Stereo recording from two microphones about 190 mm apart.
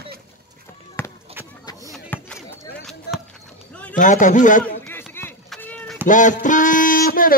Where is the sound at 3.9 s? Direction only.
40° left (ahead or behind).